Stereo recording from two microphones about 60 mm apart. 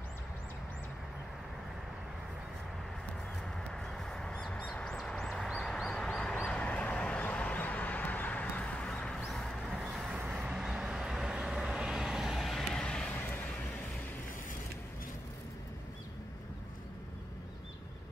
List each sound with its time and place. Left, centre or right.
3.5 s a sound: centre
9.2 s vehicle: centre
10.1 s vehicle: centre